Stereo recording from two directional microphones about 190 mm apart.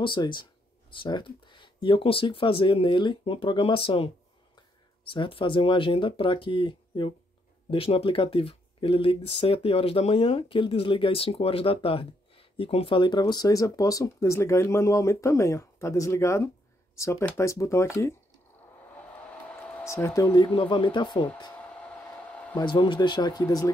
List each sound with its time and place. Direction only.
0.0 s speech: 25° left (ahead or behind)
21.5 s hair dryer: 5° left (ahead or behind)
22.6 s speech: 25° left (ahead or behind)